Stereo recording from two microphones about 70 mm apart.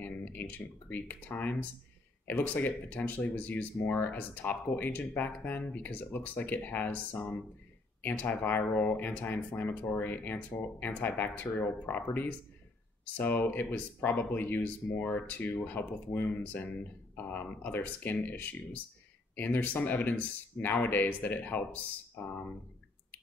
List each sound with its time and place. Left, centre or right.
0.0 s speech: left